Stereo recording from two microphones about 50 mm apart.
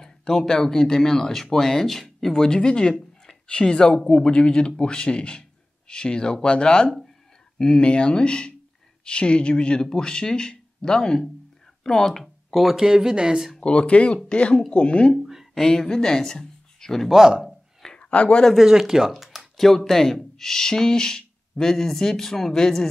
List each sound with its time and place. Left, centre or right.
0.0 s speech: centre
12.2 s a sound: centre
12.7 s speech: centre
13.6 s speech: centre
15.1 s a sound: centre
15.5 s speech: centre
17.1 s speech: centre
17.9 s a sound: left
18.6 s speech: centre